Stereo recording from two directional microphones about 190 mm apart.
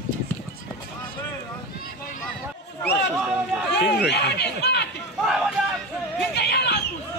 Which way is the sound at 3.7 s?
65° left (ahead or behind).